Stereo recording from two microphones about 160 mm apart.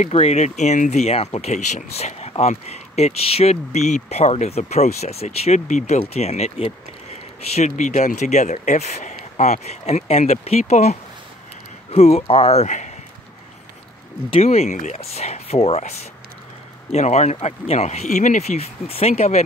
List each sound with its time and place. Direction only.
0.0 s speech: 40° left (ahead or behind)
14.3 s speech: 40° left (ahead or behind)